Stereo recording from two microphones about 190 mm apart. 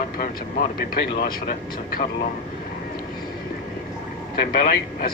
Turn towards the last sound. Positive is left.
turn(degrees=50)  # may be behind; listen again after turning